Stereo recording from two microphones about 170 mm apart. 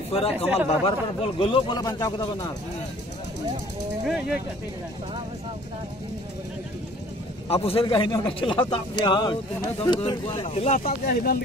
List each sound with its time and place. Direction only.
0.1 s speech: 35° left (ahead or behind)
4.0 s speech: 5° right (ahead or behind)
7.4 s a man's voice: 35° left (ahead or behind)
7.8 s speech: 25° left (ahead or behind); by 10.8 s 40° left (ahead or behind)
10.8 s speech: 60° left (ahead or behind)